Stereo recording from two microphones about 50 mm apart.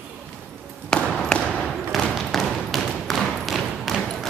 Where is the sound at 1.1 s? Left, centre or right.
Centre.